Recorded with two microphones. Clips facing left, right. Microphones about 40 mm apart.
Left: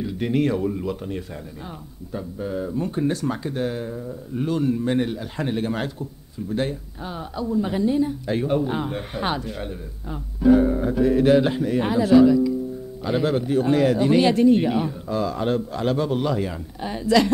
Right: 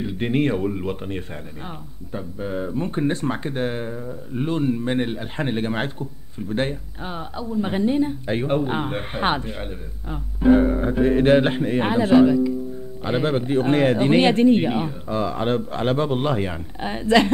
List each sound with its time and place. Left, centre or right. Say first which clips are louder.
0.0 s speech: right 1 dB; right
9.6 s speech: left 1 dB; centre